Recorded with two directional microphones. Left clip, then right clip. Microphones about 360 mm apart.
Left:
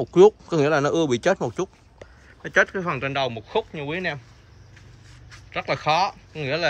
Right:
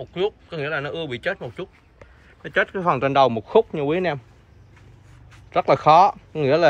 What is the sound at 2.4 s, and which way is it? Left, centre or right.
Speech, centre.